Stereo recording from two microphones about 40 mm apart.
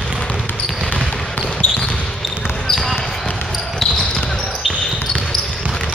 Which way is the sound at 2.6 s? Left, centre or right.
Centre.